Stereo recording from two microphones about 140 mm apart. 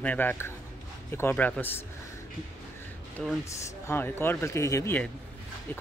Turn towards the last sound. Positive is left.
turn(degrees=20)  # may be behind; listen again after turning